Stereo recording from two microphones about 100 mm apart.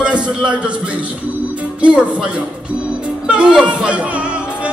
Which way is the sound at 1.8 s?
10° right (ahead or behind).